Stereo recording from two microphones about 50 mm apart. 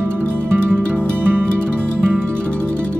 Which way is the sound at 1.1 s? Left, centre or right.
Right.